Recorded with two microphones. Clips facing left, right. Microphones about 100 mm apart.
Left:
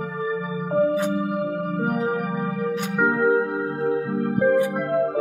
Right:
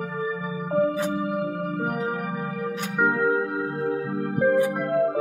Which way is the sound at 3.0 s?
Centre (ahead or behind).